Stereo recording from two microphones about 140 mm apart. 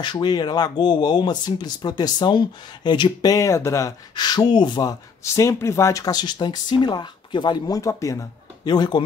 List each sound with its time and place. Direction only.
0.0 s speech: 30° left (ahead or behind)
5.2 s speech: 20° left (ahead or behind)